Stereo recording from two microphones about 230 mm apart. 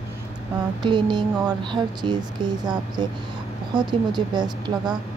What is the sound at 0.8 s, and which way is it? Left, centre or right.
Speech, centre.